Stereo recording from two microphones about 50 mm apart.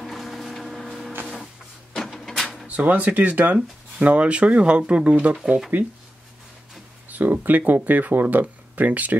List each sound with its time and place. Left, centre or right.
0.0 s a sound: centre
2.0 s printer: centre
2.6 s speech: right
5.7 s speech: right
7.1 s speech: right